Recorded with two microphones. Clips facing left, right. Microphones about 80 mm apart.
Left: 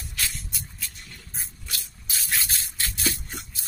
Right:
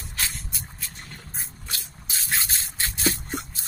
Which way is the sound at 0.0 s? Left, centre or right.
Right.